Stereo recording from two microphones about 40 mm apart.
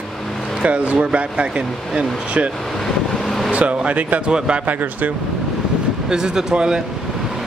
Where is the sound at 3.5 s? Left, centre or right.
Right.